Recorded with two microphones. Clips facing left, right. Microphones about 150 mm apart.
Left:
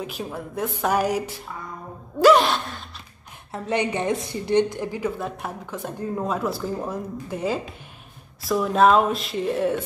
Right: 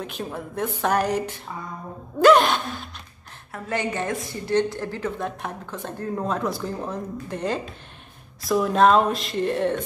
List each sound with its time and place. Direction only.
0.0 s speech: 5° left (ahead or behind)
3.5 s speech: 20° left (ahead or behind); by 9.8 s 5° left (ahead or behind)